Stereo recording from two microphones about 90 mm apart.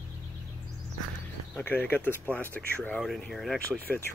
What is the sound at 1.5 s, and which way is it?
Speech, 20° left (ahead or behind).